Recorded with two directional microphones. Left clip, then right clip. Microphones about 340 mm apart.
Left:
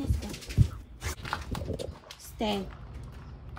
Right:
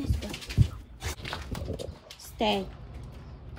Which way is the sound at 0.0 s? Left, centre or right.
Centre.